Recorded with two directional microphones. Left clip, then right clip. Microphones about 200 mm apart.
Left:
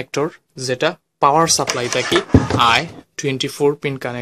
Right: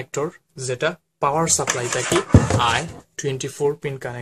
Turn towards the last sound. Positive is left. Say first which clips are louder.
# left 5 dB
turn(degrees=45)  # may be behind; listen again after turning